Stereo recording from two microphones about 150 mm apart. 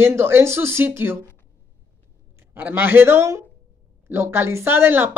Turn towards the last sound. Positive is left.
turn(degrees=-15)  # may be behind; listen again after turning